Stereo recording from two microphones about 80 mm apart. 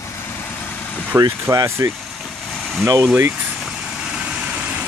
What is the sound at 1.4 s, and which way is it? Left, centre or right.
Speech, right.